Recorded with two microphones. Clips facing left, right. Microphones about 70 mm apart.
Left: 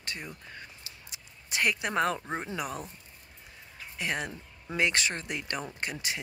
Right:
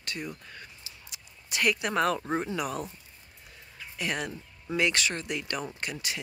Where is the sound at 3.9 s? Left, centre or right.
Left.